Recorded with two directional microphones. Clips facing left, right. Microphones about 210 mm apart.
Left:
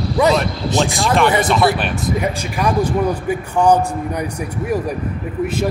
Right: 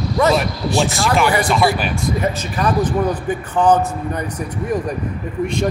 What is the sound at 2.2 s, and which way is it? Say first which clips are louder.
A man's voice: even; 10° left (ahead or behind).